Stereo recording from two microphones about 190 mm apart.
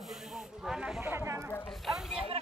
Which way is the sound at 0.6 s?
5° right (ahead or behind).